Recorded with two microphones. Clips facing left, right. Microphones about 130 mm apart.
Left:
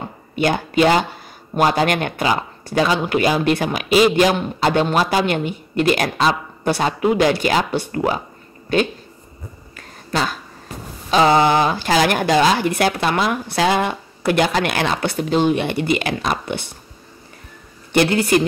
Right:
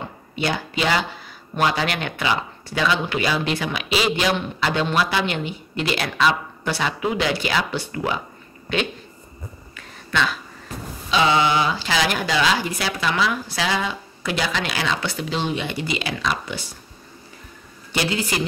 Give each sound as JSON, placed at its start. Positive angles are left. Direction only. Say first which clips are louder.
{"t": 0.4, "sound": "speech", "louder": "left 7 dB", "side_deg": 50}
{"t": 9.8, "sound": "a sound", "louder": "left 2 dB", "side_deg": 40}
{"t": 11.1, "sound": "speech", "louder": "left 5 dB", "side_deg": 45}
{"t": 17.9, "sound": "a woman's voice", "louder": "left 9 dB", "side_deg": 55}